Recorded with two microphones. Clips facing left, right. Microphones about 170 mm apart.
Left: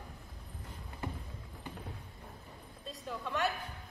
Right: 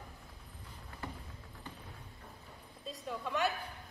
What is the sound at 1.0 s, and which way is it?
Clip-clop, 15° left (ahead or behind).